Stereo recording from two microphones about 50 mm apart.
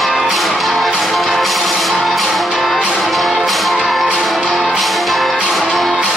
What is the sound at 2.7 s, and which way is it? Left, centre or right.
Music, centre.